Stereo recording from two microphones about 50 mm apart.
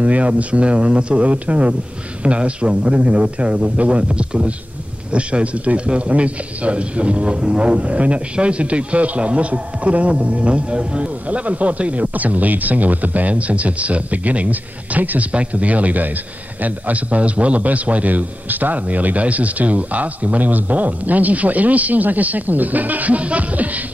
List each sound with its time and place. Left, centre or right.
0.0 s a man's voice: right